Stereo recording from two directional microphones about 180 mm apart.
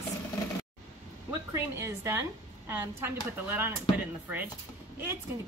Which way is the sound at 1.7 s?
15° right (ahead or behind).